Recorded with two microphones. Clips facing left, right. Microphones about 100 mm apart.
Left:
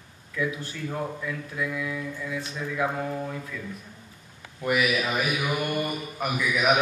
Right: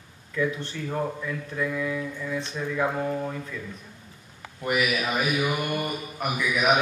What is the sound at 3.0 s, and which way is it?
Mantra, 10° right (ahead or behind).